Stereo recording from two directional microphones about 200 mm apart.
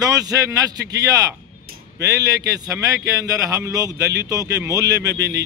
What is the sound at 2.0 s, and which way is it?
A man's voice, 15° right (ahead or behind).